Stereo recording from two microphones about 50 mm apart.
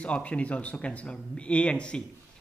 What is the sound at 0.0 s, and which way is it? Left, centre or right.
A man's voice, left.